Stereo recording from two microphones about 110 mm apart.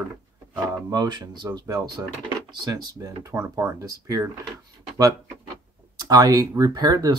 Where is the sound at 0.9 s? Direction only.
40° right (ahead or behind).